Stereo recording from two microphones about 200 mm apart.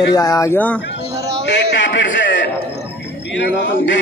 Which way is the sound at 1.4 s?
65° left (ahead or behind).